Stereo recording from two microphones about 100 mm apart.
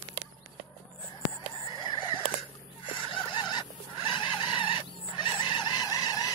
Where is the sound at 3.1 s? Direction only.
50° left (ahead or behind).